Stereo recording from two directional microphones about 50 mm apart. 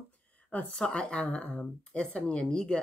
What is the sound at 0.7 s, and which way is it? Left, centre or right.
Speech, centre.